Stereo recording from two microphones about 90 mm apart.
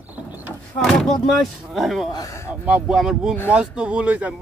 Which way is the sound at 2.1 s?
40° left (ahead or behind).